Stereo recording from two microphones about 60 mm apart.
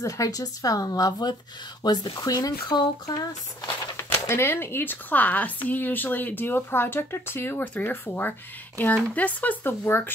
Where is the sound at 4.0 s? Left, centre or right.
Left.